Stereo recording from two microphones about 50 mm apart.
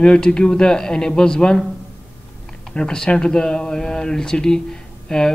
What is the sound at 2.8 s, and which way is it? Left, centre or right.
Speech, centre.